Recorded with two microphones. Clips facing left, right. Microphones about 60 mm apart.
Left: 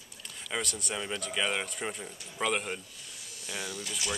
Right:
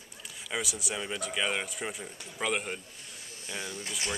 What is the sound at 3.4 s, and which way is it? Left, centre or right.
Speech, right.